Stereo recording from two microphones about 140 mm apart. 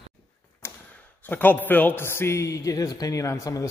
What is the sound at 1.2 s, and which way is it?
A man's voice, 10° left (ahead or behind).